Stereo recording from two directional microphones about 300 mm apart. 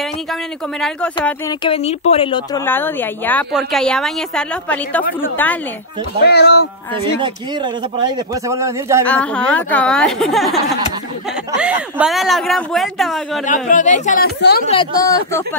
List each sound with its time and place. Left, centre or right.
0.3 s speech: centre
1.6 s speech: centre
6.2 s speech: left
7.2 s speech: centre
9.0 s speech: centre
11.6 s speech: centre
13.5 s speech: left
14.7 s speech: centre